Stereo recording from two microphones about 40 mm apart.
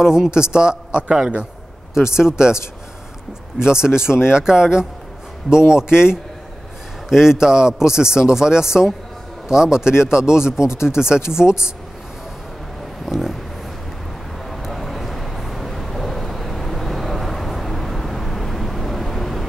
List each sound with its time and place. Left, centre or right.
0.0 s speech: centre
13.0 s speech: centre
14.7 s vehicle: centre